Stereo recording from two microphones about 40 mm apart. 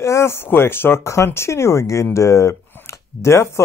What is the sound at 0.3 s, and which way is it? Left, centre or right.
Speech, left.